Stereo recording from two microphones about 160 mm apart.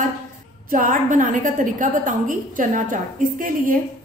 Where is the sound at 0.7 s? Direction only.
60° right (ahead or behind).